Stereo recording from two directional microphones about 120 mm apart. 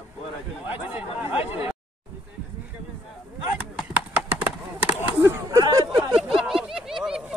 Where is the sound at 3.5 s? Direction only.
10° right (ahead or behind).